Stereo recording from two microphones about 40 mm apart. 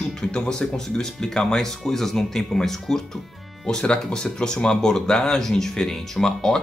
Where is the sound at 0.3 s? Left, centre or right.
Centre.